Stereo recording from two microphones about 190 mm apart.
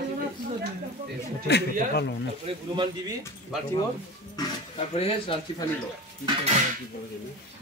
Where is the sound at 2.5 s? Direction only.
30° right (ahead or behind).